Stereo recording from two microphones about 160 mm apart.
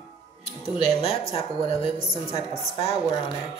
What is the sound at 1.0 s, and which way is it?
Speech, 35° left (ahead or behind).